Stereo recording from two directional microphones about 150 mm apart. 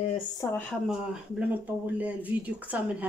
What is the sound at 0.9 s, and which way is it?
A woman's voice, 10° right (ahead or behind).